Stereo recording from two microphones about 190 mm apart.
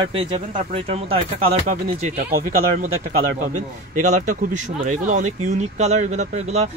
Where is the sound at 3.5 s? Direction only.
40° right (ahead or behind).